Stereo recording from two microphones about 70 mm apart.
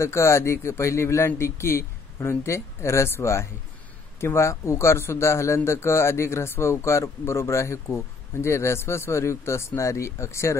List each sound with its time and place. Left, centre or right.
0.0 s a man's voice: left